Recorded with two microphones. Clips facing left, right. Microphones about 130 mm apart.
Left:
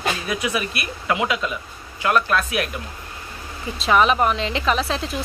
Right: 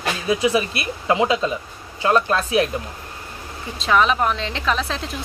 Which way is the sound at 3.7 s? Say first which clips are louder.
Left 1 dB; 5° left (ahead or behind).